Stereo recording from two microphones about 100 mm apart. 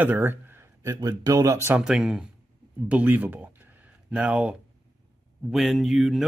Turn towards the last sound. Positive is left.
turn(degrees=0)  # may be behind; listen again after turning